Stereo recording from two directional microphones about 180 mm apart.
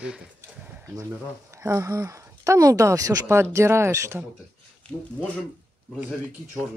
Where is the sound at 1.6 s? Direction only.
15° right (ahead or behind).